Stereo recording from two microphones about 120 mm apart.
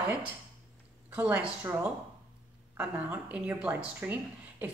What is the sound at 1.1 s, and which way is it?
Speech, 15° right (ahead or behind).